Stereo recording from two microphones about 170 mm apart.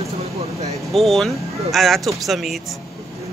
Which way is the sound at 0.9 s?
Centre (ahead or behind).